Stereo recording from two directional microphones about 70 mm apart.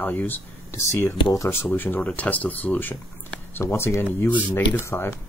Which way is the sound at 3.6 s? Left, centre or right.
Left.